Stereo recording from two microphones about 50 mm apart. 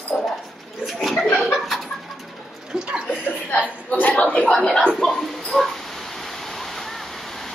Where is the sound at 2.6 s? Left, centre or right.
Centre.